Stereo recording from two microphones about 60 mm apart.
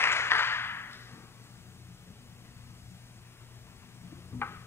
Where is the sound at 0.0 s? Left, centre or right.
Left.